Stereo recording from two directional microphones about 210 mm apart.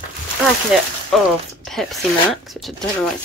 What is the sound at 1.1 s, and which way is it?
A woman's voice, centre (ahead or behind).